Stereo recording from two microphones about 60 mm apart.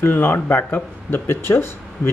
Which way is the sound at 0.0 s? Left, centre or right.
Left.